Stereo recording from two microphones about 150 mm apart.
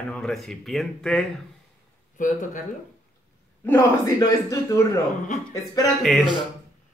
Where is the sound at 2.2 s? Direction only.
60° left (ahead or behind).